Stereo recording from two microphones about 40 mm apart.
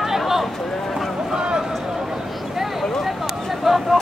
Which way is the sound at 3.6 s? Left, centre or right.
Centre.